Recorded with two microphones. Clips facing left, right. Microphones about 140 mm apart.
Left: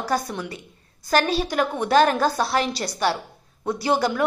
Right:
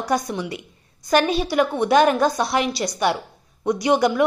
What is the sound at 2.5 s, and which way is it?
A woman's voice, 15° right (ahead or behind).